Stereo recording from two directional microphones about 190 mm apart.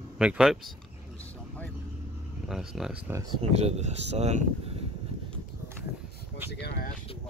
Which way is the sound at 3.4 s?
35° right (ahead or behind).